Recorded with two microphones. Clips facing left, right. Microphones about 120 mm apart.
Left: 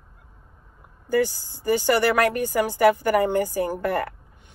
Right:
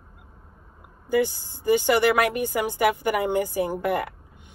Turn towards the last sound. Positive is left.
turn(degrees=-15)  # may be behind; listen again after turning